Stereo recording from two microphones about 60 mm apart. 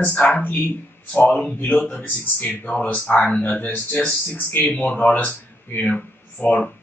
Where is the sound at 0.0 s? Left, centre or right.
Left.